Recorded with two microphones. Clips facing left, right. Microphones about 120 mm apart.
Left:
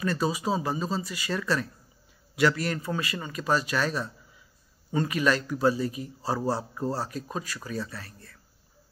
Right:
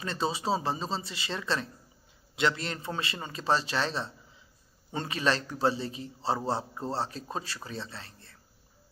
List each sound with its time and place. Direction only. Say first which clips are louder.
0.0 s a man's voice: left 4 dB; 25° right (ahead or behind)